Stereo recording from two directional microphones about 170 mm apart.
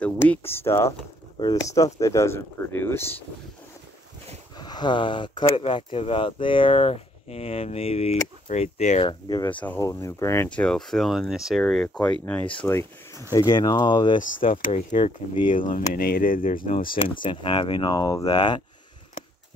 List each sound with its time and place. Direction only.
0.0 s speech: 10° left (ahead or behind)
4.6 s speech: 25° left (ahead or behind); by 9.1 s 40° left (ahead or behind)
9.3 s speech: 25° left (ahead or behind)
9.6 s speech: 15° left (ahead or behind)
14.7 s speech: 40° left (ahead or behind)
15.6 s speech: 50° left (ahead or behind)
17.1 s speech: 30° left (ahead or behind)